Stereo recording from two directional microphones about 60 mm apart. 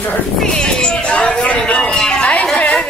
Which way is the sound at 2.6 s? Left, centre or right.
Left.